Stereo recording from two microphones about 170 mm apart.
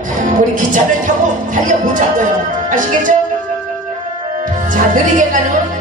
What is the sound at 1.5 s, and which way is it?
Music, 50° right (ahead or behind).